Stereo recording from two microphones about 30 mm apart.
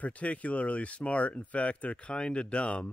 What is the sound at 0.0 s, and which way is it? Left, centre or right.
Speech, left.